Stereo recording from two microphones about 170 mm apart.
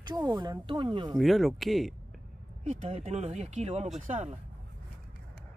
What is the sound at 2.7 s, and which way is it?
Speech, 35° right (ahead or behind).